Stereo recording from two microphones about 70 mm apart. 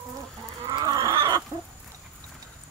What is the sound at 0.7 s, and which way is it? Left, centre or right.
Livestock, right.